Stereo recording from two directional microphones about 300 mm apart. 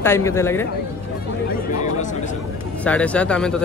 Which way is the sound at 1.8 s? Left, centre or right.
Left.